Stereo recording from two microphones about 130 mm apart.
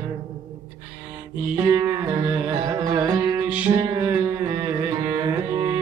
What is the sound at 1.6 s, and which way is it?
Music, 25° right (ahead or behind).